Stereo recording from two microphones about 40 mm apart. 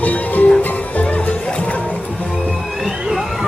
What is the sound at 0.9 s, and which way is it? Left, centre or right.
Music, left.